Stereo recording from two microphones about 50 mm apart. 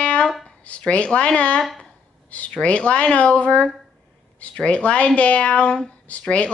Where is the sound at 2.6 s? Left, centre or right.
Left.